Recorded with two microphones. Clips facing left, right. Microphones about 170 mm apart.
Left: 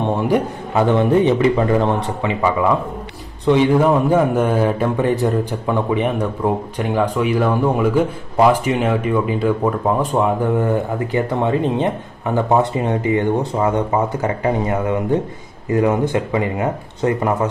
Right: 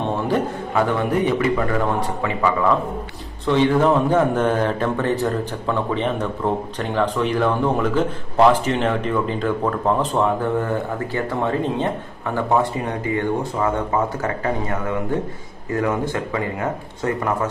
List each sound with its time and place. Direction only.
0.0 s a man's voice: 20° left (ahead or behind)
14.2 s a man's voice: 20° left (ahead or behind)